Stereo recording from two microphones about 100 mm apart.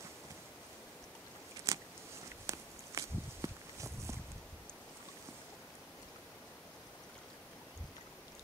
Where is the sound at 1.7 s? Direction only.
35° right (ahead or behind).